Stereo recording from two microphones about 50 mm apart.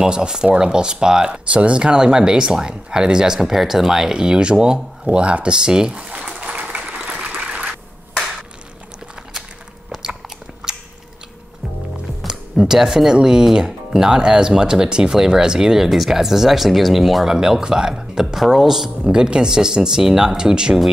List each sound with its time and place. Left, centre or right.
0.0 s speech: centre
5.9 s speech: right
6.4 s a sound: right
12.3 s speech: centre